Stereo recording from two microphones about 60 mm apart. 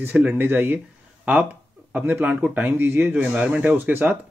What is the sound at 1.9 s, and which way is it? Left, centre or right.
Speech, right.